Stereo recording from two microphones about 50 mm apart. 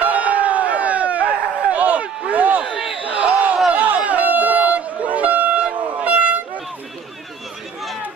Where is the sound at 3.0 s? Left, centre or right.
Right.